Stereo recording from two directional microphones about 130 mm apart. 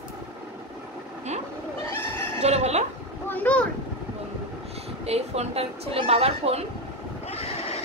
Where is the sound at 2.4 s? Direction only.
55° right (ahead or behind).